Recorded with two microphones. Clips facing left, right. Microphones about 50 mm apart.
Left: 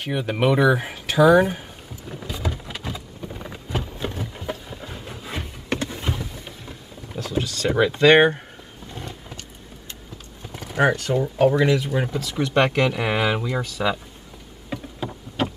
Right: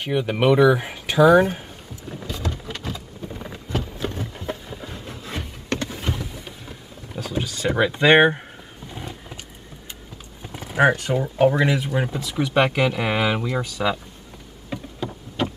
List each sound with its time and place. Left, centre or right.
0.0 s speech: centre
2.0 s rain: centre
8.1 s speech: centre
8.9 s vehicle: centre
10.5 s a sound: centre
10.8 s speech: centre
14.7 s boat: centre